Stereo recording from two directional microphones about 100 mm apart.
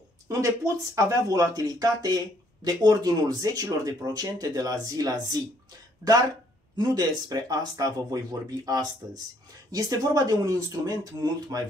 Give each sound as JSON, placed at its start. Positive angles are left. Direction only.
{"t": 0.3, "sound": "speech", "side_deg": -35}
{"t": 6.8, "sound": "speech", "side_deg": -40}